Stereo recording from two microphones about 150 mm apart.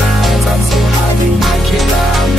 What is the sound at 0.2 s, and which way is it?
Music, centre (ahead or behind).